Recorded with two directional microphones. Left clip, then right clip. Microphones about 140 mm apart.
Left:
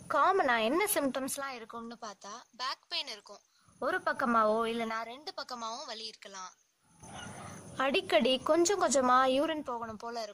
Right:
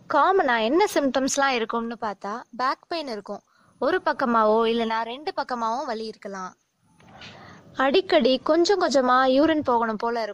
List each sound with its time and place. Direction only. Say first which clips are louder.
0.1 s a woman's voice: right 7 dB; 50° right (ahead or behind)
1.1 s a woman's voice: right 15 dB; 65° right (ahead or behind)
1.7 s speech: right 15 dB; 30° right (ahead or behind)
2.6 s speech: right 10 dB; centre (ahead or behind)
3.8 s a woman's voice: right 8 dB; 60° right (ahead or behind); by 5.2 s 80° right
5.2 s a woman's voice: right 13 dB; 30° right (ahead or behind)
5.6 s speech: right 13 dB; centre (ahead or behind)
7.7 s a woman's voice: right 9 dB; 55° right (ahead or behind)
9.8 s speech: right 14 dB; 30° right (ahead or behind)